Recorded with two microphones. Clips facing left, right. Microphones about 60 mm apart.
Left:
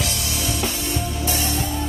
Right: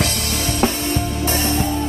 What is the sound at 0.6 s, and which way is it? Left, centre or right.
Music, right.